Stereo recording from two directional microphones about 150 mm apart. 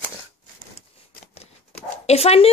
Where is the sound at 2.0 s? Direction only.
45° left (ahead or behind).